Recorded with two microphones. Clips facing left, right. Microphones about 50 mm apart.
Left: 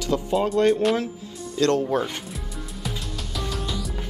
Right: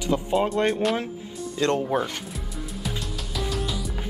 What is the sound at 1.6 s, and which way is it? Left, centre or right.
Speech, centre.